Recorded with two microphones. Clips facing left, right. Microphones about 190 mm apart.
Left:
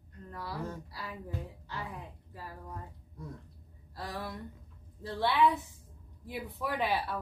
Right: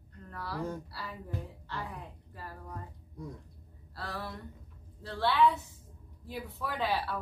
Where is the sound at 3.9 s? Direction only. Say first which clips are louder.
Left 1 dB; 15° left (ahead or behind).